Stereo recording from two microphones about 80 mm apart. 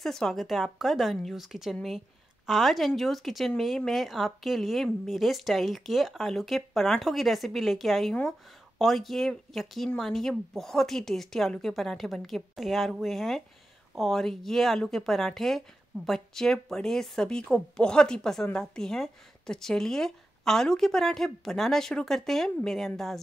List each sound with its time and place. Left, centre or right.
0.0 s a woman's voice: centre